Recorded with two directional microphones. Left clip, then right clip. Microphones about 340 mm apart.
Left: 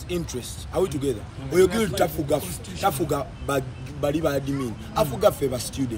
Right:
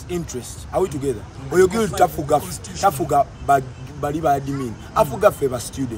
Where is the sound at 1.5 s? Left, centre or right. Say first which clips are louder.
Right 4 dB; centre.